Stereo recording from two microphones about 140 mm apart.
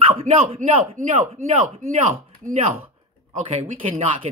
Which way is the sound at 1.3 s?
55° right (ahead or behind).